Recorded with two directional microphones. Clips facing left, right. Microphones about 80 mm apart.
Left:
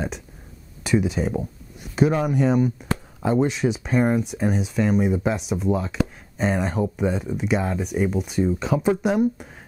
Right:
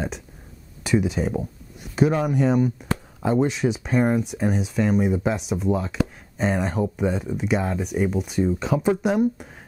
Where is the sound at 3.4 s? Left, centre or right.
Centre.